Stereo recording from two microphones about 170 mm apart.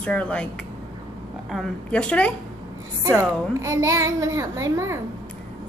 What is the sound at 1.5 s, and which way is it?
Speech, 5° left (ahead or behind).